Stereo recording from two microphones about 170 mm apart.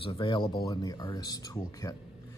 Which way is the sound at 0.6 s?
20° left (ahead or behind).